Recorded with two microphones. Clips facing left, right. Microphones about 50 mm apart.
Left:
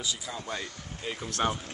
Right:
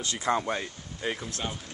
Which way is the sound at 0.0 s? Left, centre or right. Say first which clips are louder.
Right 9 dB; right.